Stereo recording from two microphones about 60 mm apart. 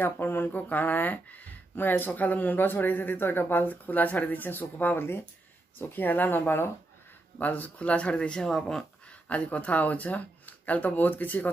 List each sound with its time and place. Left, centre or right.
0.0 s speech: left
7.3 s speech: left; by 8.8 s centre
9.3 s speech: left